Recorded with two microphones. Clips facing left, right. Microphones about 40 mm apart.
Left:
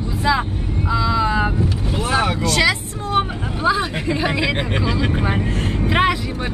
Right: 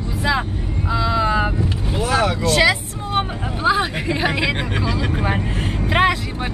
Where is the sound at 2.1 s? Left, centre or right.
Centre.